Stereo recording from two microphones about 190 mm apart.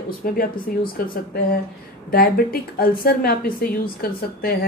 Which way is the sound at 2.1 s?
50° left (ahead or behind).